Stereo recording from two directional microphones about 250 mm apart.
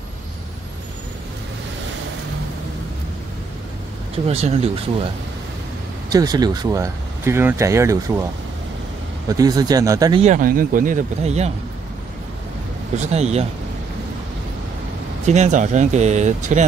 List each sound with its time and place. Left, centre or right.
4.3 s speech: right
9.3 s speech: centre
10.2 s speech: right
12.9 s speech: right
15.2 s speech: right